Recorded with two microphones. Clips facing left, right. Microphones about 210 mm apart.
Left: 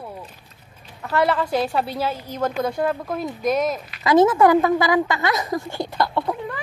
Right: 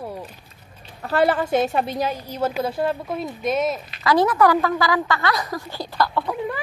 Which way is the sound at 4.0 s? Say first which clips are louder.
Left 3 dB; 20° left (ahead or behind).